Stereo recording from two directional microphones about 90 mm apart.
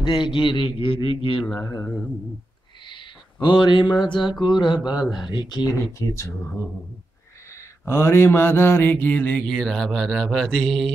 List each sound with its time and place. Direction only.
0.0 s a man's voice: 60° left (ahead or behind)
2.9 s a sound: 65° left (ahead or behind)
4.0 s speech: 60° left (ahead or behind)
5.7 s speech: 35° left (ahead or behind)
7.8 s mantra: 30° left (ahead or behind); by 9.8 s 5° left (ahead or behind)
9.8 s speech: centre (ahead or behind)